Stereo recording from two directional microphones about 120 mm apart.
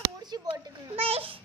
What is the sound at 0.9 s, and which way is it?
Speech, 50° right (ahead or behind).